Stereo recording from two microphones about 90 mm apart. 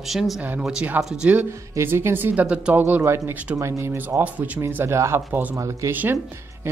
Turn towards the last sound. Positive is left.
turn(degrees=-25)  # may be behind; listen again after turning